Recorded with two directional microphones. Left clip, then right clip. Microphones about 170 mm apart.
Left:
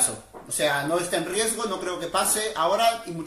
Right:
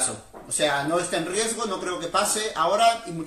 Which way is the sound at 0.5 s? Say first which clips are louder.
Right 1 dB; 15° left (ahead or behind).